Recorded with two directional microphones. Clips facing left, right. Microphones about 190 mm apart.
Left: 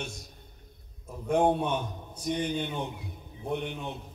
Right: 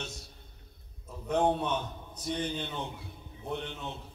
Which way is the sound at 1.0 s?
10° left (ahead or behind).